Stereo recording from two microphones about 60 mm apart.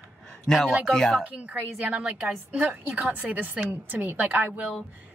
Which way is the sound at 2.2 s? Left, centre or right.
Right.